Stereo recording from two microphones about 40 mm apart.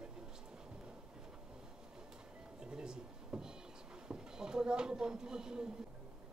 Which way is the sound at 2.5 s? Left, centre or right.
Centre.